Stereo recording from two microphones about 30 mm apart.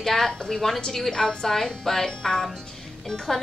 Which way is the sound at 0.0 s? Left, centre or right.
Centre.